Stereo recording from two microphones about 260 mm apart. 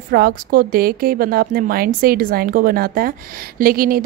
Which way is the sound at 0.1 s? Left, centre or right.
Right.